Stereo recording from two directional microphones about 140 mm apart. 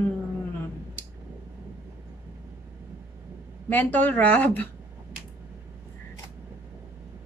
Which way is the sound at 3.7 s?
10° left (ahead or behind).